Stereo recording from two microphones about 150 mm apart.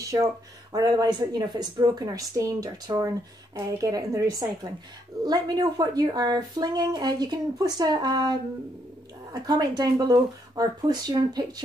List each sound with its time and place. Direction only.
0.0 s speech: 20° right (ahead or behind)